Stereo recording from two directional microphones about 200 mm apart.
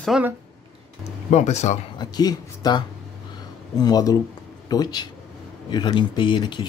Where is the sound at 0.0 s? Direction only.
Centre (ahead or behind).